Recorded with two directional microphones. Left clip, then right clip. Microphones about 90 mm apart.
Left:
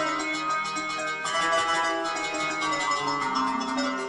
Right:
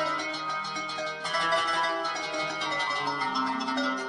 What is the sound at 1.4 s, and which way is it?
Music, 30° right (ahead or behind).